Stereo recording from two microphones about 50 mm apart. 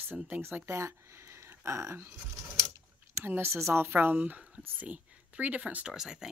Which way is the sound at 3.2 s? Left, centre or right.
Right.